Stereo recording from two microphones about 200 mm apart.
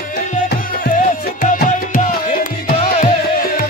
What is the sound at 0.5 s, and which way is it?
Music, 45° left (ahead or behind).